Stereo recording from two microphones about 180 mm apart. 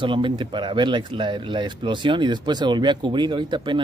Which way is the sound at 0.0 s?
25° right (ahead or behind).